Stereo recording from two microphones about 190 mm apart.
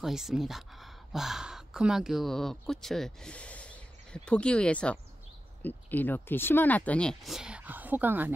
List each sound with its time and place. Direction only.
0.0 s speech: centre (ahead or behind)